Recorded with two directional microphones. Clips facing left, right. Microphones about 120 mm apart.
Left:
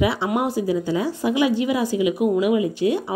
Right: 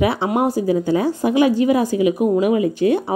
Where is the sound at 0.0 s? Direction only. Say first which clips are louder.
Right 3 dB; 50° right (ahead or behind).